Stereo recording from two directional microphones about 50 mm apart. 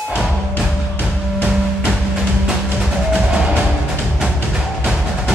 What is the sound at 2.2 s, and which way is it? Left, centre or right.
Music, centre.